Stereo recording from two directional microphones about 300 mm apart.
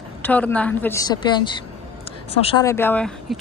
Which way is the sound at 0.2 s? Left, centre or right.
Centre.